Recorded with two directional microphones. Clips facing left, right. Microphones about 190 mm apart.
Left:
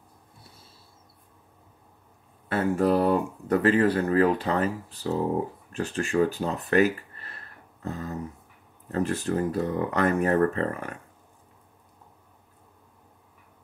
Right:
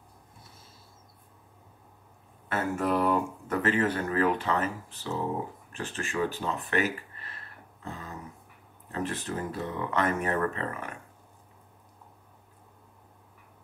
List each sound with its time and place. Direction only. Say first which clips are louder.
2.4 s speech: left 6 dB; 35° left (ahead or behind)